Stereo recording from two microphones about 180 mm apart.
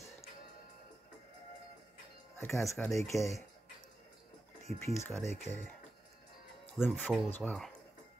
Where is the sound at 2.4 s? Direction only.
15° left (ahead or behind).